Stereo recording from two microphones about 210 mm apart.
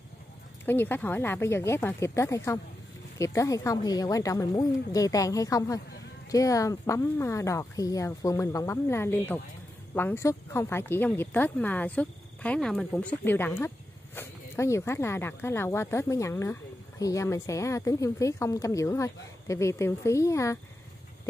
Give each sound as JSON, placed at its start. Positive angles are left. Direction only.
{"t": 0.7, "sound": "speech", "side_deg": 10}